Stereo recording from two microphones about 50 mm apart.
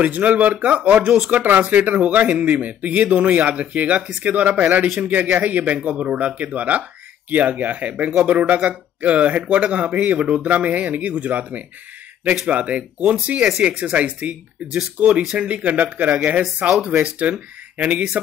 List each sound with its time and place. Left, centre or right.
0.0 s speech: right